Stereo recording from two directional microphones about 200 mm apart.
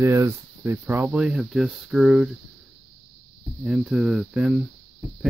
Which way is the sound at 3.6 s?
5° right (ahead or behind).